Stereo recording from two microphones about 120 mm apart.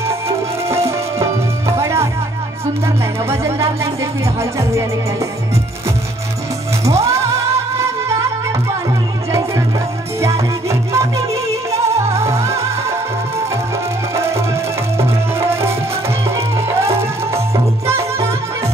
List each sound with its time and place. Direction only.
0.7 s music: 25° right (ahead or behind)
3.3 s speech: 25° right (ahead or behind)
6.8 s music: 25° right (ahead or behind)
10.7 s music: 25° right (ahead or behind)
14.1 s music: 20° right (ahead or behind)